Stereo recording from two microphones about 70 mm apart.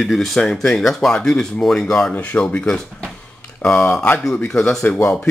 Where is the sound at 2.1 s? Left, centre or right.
Left.